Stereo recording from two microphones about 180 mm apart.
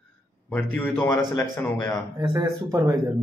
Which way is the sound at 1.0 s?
15° left (ahead or behind).